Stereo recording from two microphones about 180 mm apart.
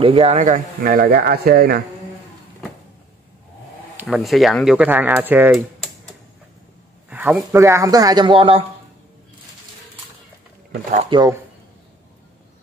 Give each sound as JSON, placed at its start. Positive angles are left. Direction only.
{"t": 0.0, "sound": "speech", "side_deg": -30}
{"t": 4.1, "sound": "speech", "side_deg": 0}
{"t": 7.1, "sound": "speech", "side_deg": -10}
{"t": 11.1, "sound": "speech", "side_deg": -25}